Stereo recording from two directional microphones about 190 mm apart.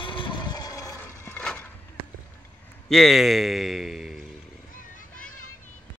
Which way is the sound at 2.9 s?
Centre (ahead or behind).